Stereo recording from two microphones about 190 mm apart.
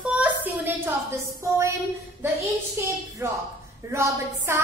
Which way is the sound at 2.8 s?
10° right (ahead or behind).